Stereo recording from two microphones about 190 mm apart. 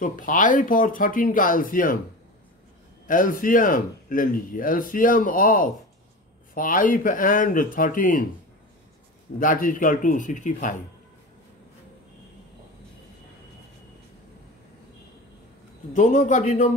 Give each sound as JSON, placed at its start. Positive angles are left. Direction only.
{"t": 0.0, "sound": "speech", "side_deg": 45}
{"t": 3.1, "sound": "speech", "side_deg": 45}
{"t": 9.4, "sound": "speech", "side_deg": 45}
{"t": 15.9, "sound": "speech", "side_deg": 40}